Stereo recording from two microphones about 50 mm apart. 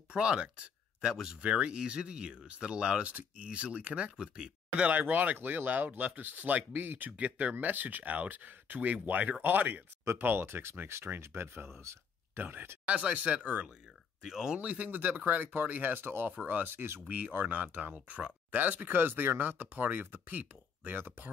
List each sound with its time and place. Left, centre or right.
0.1 s speech: right
1.4 s speech: right
4.8 s speech: right
7.1 s speech: right
7.5 s speech: right
10.2 s speech: right
12.4 s speech: right
12.8 s speech: right
14.2 s speech: centre
14.6 s speech: right
17.3 s speech: right